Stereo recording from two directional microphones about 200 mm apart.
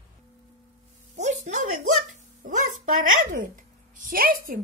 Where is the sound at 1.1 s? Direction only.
35° right (ahead or behind).